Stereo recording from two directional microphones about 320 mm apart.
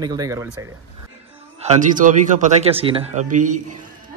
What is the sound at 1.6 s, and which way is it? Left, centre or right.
Speech, right.